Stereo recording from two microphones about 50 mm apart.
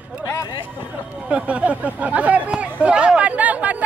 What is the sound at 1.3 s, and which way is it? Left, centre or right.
Speech, right.